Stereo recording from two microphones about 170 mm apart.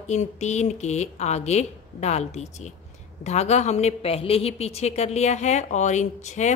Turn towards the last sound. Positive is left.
turn(degrees=45)  # may be behind; listen again after turning